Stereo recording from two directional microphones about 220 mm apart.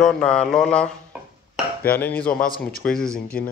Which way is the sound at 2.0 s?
5° left (ahead or behind).